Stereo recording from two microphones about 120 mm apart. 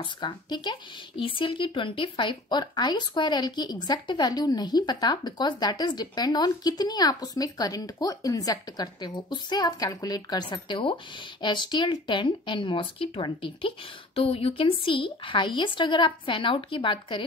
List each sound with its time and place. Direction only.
0.0 s speech: 40° left (ahead or behind)